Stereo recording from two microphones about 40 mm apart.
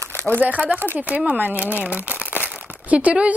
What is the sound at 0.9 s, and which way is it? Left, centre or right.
Speech, right.